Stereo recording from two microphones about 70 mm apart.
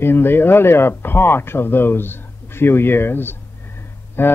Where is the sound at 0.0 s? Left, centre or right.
Left.